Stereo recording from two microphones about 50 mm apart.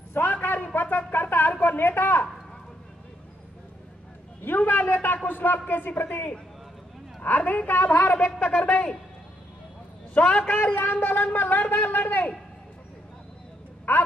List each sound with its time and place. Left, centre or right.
0.1 s a sound: left
4.4 s a man's voice: left
10.1 s a man's voice: left
10.4 s a man's voice: left
13.9 s a man's voice: left